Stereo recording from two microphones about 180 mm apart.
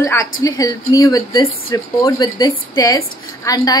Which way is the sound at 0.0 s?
15° left (ahead or behind).